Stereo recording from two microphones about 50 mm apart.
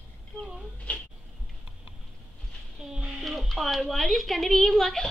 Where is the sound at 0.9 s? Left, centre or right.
Left.